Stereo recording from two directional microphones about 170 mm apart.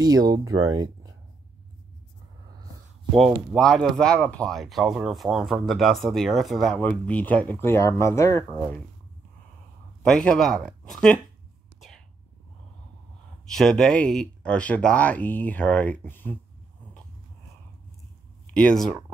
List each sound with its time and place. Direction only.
0.0 s speech: 20° right (ahead or behind)
3.2 s speech: 5° left (ahead or behind)
10.0 s speech: 5° left (ahead or behind)
13.5 s speech: 5° left (ahead or behind)
18.5 s speech: 5° left (ahead or behind)